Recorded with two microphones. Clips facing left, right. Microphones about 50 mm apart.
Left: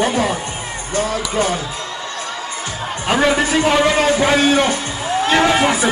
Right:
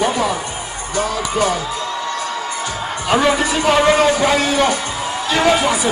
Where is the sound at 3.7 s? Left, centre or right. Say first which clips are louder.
Right 4 dB; right.